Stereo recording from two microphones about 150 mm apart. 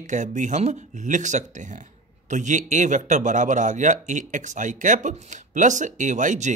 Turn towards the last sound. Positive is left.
turn(degrees=-55)  # may be behind; listen again after turning